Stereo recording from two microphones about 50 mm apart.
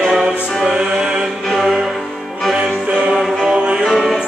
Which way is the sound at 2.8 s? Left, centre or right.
Centre.